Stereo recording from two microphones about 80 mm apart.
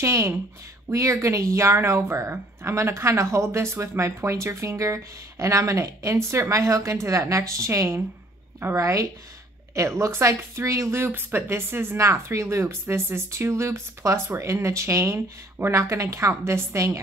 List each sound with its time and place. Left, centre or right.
0.0 s speech: right